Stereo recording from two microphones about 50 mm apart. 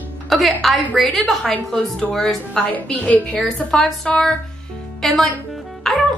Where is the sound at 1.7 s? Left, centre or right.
Centre.